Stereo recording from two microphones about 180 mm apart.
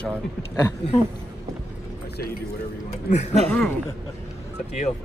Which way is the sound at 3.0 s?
40° left (ahead or behind).